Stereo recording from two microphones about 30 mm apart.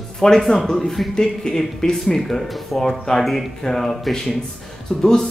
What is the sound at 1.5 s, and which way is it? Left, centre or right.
Speech, left.